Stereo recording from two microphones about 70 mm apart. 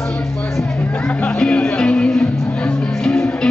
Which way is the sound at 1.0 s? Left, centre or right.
Centre.